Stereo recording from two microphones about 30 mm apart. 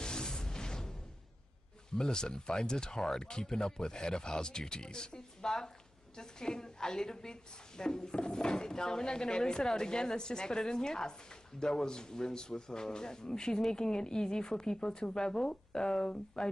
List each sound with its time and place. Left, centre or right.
0.0 s music: left
2.0 s a woman's voice: left